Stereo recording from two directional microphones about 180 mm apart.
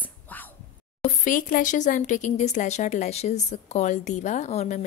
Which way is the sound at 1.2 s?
45° left (ahead or behind).